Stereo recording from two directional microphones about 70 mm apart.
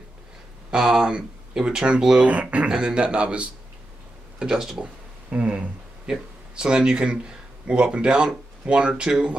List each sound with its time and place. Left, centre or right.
0.7 s speech: centre
5.3 s speech: centre